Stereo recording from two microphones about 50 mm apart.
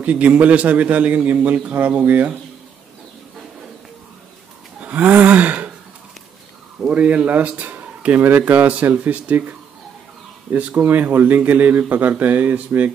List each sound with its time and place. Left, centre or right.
0.0 s a man's voice: right
4.7 s a sound: right
5.2 s speech: right
6.9 s a man's voice: right
7.8 s a sound: right
8.4 s speech: right